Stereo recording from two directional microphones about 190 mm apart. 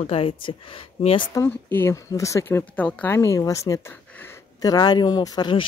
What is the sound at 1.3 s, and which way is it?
Speech, 15° left (ahead or behind).